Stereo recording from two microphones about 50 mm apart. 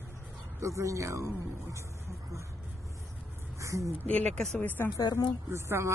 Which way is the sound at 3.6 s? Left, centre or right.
Right.